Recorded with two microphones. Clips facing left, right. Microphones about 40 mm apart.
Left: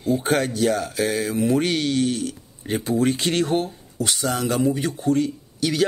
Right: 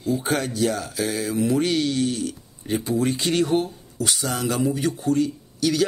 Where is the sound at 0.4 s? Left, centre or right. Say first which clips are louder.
Left 3 dB; centre.